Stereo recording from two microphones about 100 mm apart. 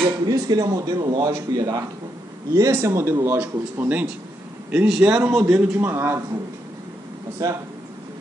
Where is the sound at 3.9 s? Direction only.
15° right (ahead or behind).